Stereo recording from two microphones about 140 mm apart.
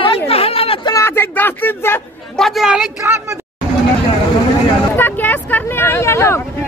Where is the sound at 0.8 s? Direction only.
20° left (ahead or behind).